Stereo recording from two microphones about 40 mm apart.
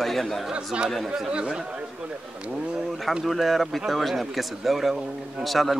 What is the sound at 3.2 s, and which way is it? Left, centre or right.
Speech, centre.